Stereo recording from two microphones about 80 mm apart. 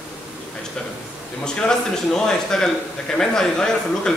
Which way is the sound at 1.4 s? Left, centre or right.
Centre.